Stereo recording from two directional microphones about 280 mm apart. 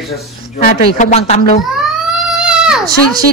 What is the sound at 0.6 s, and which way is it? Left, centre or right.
Speech, left.